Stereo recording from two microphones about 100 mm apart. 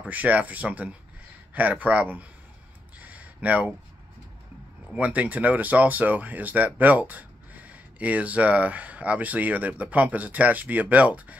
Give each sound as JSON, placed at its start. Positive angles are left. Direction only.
{"t": 0.0, "sound": "speech", "side_deg": -15}
{"t": 3.0, "sound": "a sound", "side_deg": -15}
{"t": 4.9, "sound": "speech", "side_deg": -15}